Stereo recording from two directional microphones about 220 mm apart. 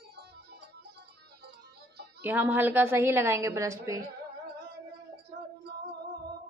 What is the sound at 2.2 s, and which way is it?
A woman's voice, 10° right (ahead or behind).